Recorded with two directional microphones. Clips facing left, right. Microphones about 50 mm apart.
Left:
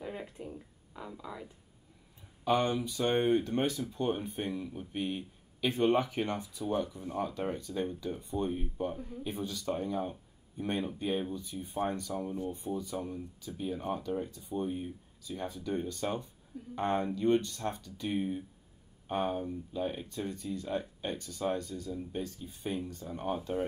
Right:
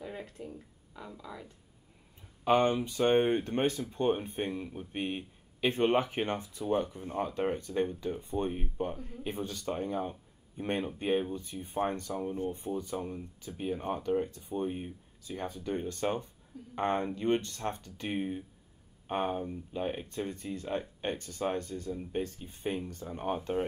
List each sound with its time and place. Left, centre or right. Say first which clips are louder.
0.0 s a sound: left 1 dB; centre
0.9 s speech: left 1 dB; centre
2.4 s speech: right 3 dB; right